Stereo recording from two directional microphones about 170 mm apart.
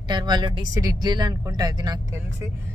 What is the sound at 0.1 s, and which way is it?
Speech, 25° right (ahead or behind).